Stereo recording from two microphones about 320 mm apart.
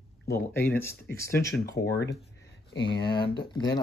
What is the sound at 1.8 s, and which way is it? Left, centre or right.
Speech, left.